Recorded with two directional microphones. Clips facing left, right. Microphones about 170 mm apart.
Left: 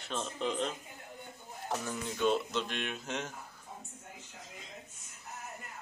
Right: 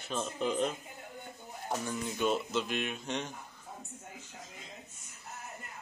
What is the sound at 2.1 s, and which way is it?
Speech, 5° right (ahead or behind).